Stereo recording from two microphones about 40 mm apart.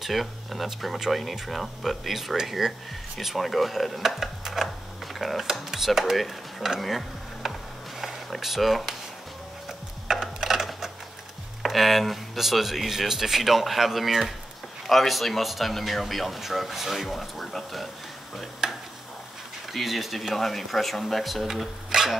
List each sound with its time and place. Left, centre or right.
0.0 s speech: centre
6.8 s insect: centre
8.0 s a sound: centre
11.6 s speech: centre
18.6 s tick-tock: centre
19.7 s speech: centre